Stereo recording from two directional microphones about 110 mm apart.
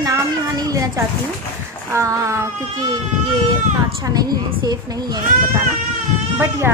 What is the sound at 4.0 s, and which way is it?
A child's voice, 35° right (ahead or behind).